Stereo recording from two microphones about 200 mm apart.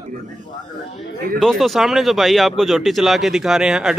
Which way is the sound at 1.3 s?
Centre (ahead or behind).